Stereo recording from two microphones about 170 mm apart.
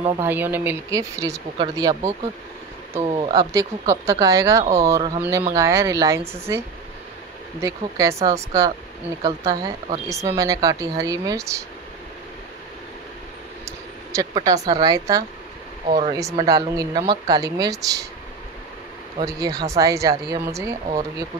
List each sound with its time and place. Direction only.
0.2 s speech: 10° right (ahead or behind)
3.0 s speech: 30° right (ahead or behind)
7.6 s speech: 20° right (ahead or behind)
14.3 s speech: 20° right (ahead or behind)
19.1 s speech: 25° right (ahead or behind)